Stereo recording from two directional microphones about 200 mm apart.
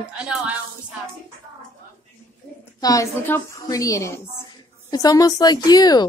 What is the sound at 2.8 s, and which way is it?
A woman's voice, 15° left (ahead or behind).